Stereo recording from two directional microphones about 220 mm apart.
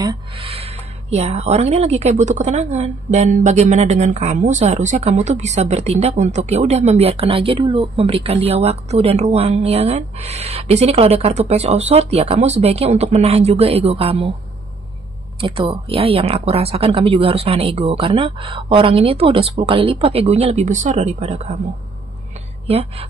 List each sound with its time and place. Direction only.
0.0 s speech: 20° right (ahead or behind)
15.4 s speech: 25° right (ahead or behind)
22.7 s speech: 25° right (ahead or behind)